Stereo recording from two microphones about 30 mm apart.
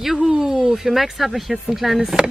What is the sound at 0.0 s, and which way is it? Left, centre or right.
Speech, centre.